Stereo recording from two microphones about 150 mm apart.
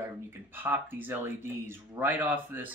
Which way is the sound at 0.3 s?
15° right (ahead or behind).